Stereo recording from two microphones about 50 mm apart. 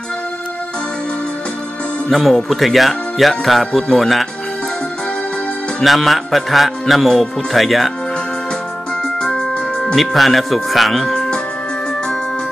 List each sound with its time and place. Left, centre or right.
2.0 s speech: centre
5.8 s speech: centre
9.0 s music: centre
9.9 s speech: centre
11.1 s music: centre